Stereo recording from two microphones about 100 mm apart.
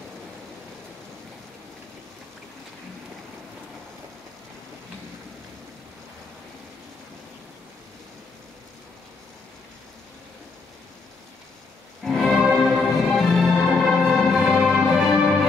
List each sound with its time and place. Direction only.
12.0 s music: centre (ahead or behind)